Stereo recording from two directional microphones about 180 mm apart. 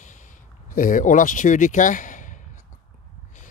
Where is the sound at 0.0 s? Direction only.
45° left (ahead or behind).